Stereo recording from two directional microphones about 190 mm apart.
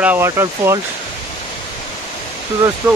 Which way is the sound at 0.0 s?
10° right (ahead or behind).